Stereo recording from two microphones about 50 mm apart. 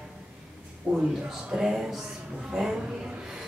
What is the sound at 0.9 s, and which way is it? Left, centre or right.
Speech, centre.